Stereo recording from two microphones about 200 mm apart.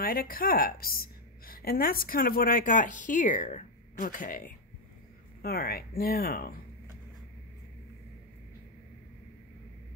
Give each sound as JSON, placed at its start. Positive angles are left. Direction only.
{"t": 0.0, "sound": "a woman's voice", "side_deg": 45}